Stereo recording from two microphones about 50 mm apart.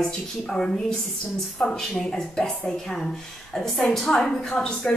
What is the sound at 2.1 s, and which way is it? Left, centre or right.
Speech, centre.